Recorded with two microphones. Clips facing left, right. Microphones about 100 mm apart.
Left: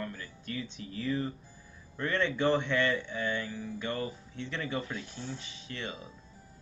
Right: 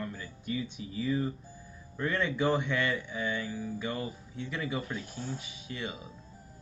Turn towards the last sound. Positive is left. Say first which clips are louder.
# right 1 dB
turn(degrees=-10)  # may be behind; listen again after turning